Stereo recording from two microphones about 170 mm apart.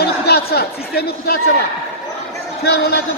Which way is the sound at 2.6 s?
70° left (ahead or behind).